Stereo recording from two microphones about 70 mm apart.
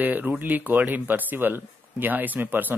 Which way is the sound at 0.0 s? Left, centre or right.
Right.